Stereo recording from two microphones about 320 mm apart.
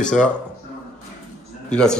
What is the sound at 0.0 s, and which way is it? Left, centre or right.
Speech, centre.